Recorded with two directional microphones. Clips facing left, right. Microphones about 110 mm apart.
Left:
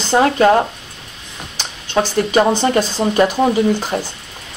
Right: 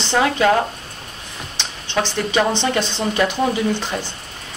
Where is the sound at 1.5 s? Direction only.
45° left (ahead or behind).